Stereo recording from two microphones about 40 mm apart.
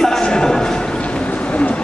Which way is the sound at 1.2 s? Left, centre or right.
Left.